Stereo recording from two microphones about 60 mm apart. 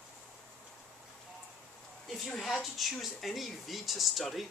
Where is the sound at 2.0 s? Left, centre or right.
Centre.